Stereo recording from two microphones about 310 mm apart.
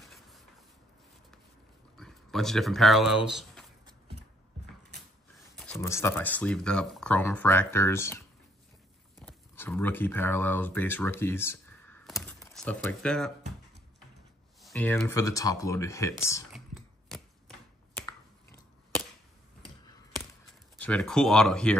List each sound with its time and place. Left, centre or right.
0.0 s a sound: centre
2.0 s speech: centre
5.6 s speech: centre
9.2 s speech: centre
14.6 s speech: centre
20.7 s speech: centre